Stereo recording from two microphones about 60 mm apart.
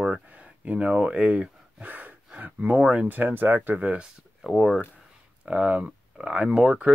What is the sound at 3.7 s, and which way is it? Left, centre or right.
Speech, right.